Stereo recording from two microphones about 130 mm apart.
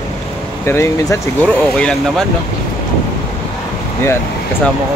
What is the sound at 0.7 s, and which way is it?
Speech, 20° left (ahead or behind).